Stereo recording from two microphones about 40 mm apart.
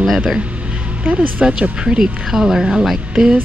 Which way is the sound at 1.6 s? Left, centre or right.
Centre.